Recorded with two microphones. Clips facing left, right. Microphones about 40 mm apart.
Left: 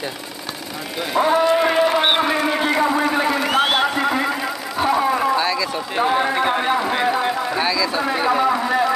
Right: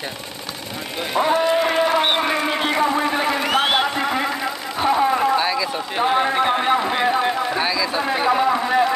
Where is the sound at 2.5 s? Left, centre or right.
Centre.